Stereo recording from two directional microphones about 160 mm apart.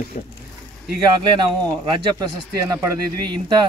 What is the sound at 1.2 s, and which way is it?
Speech, 30° right (ahead or behind).